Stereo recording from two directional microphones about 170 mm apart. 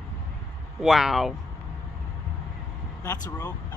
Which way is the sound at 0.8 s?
Centre (ahead or behind).